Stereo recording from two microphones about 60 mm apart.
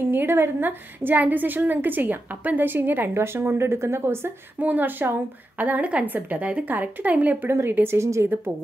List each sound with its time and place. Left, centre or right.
0.1 s a woman's voice: right
4.6 s a woman's voice: right
7.4 s a woman's voice: right